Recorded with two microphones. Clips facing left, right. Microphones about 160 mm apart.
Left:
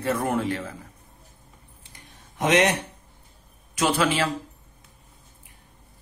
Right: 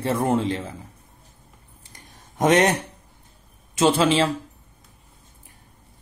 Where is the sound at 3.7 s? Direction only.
25° right (ahead or behind).